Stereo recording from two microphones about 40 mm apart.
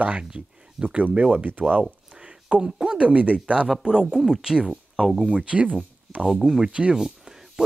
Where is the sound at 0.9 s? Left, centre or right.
Right.